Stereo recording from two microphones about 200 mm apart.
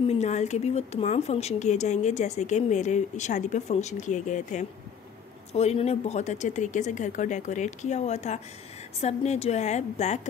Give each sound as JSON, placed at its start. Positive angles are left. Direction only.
{"t": 0.0, "sound": "speech", "side_deg": 35}